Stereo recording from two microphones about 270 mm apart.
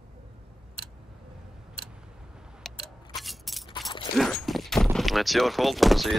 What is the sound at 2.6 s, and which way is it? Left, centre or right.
Camera, centre.